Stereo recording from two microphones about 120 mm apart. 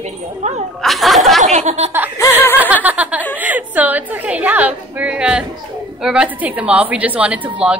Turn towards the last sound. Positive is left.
turn(degrees=-10)  # may be behind; listen again after turning